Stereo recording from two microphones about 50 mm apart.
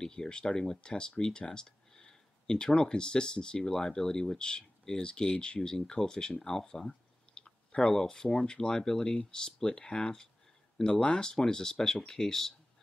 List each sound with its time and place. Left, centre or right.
0.0 s speech: centre